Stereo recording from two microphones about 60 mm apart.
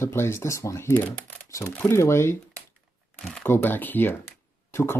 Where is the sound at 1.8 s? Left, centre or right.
Left.